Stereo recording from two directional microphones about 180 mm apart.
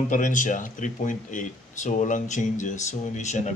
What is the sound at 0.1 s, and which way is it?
Speech, 45° left (ahead or behind).